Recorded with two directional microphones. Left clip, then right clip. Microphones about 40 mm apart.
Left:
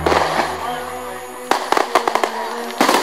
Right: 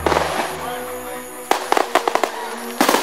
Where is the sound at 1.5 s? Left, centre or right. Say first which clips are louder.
Left 1 dB; right.